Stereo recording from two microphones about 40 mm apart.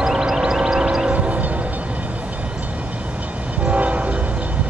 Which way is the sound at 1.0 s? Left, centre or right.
Right.